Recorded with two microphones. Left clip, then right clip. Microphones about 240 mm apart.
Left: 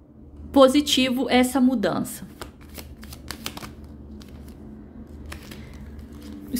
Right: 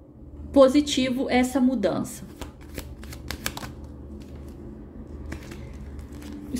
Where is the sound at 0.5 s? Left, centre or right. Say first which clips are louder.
Left 1 dB; centre.